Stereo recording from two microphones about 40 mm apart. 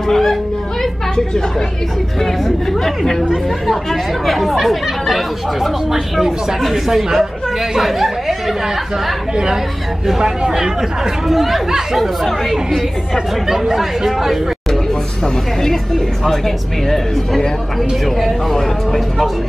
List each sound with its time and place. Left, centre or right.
0.1 s speech: centre
3.6 s speech: centre
10.0 s speech: centre
13.5 s speech: centre
16.3 s speech: centre